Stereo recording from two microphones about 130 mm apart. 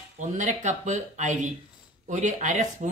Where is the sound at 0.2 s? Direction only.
70° right (ahead or behind).